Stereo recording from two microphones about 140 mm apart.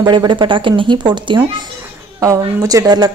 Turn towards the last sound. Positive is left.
turn(degrees=-30)  # may be behind; listen again after turning